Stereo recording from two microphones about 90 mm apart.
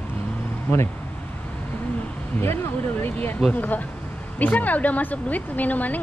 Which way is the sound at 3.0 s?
20° left (ahead or behind).